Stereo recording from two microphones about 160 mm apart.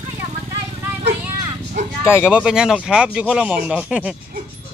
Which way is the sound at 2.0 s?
15° left (ahead or behind).